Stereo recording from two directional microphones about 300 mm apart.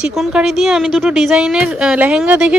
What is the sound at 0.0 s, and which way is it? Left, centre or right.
A woman's voice, centre.